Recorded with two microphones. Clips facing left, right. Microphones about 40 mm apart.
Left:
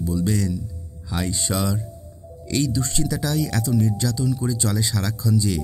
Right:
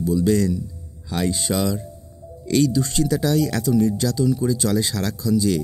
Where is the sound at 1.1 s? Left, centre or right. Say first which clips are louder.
Right 3 dB; centre.